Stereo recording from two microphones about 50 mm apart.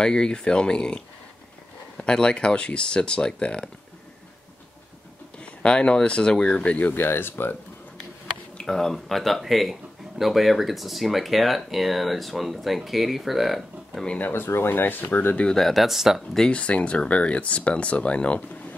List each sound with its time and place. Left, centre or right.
0.0 s speech: centre
2.0 s speech: centre
5.4 s speech: left
6.6 s speech: left
7.0 s speech: left
8.6 s speech: centre
14.0 s speech: left
14.3 s speech: left
15.5 s speech: centre
16.5 s speech: left